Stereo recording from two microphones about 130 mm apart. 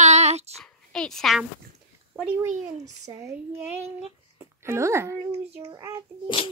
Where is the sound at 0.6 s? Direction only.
5° left (ahead or behind).